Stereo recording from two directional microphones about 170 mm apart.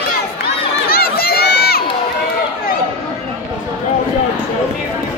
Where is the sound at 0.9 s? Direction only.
65° left (ahead or behind).